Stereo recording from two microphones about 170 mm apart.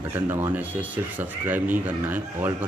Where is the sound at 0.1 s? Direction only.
15° right (ahead or behind).